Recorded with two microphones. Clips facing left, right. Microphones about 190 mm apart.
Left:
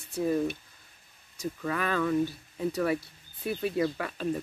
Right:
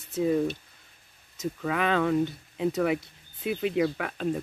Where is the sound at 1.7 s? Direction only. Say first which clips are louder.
Right 3 dB; 80° right.